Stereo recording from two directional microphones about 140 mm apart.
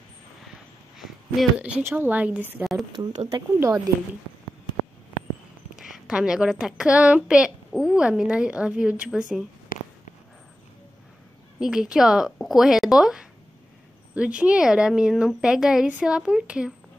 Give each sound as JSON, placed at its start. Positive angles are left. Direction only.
{"t": 0.9, "sound": "a woman's voice", "side_deg": 0}
{"t": 3.3, "sound": "a woman's voice", "side_deg": -25}
{"t": 5.8, "sound": "a woman's voice", "side_deg": -5}
{"t": 9.7, "sound": "a sound", "side_deg": 75}
{"t": 11.6, "sound": "speech", "side_deg": -5}